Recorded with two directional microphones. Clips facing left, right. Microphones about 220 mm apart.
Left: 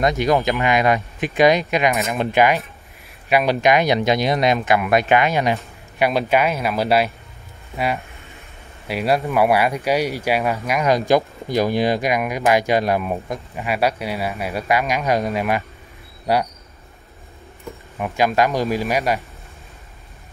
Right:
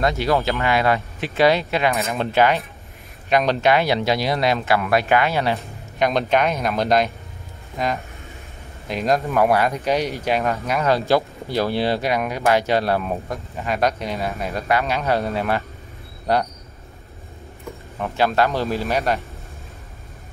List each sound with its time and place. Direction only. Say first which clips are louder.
0.0 s speech: left 2 dB; 15° left (ahead or behind)
17.9 s speech: left 1 dB; 15° left (ahead or behind)